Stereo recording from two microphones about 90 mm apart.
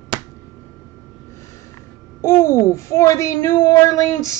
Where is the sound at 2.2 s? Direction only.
30° left (ahead or behind).